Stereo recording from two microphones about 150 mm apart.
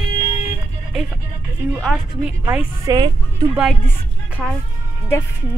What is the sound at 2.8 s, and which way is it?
Speech, 30° right (ahead or behind).